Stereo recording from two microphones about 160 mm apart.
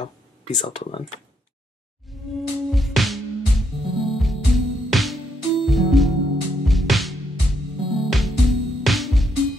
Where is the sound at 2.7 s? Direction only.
Centre (ahead or behind).